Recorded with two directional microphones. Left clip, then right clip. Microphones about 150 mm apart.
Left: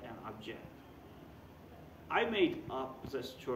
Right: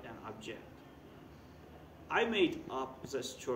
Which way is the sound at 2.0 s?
15° left (ahead or behind).